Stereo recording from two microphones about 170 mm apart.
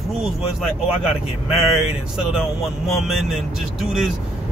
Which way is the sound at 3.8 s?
Centre (ahead or behind).